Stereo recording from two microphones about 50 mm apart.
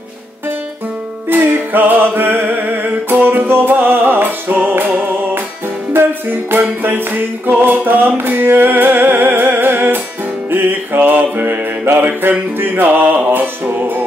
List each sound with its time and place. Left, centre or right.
1.3 s music: right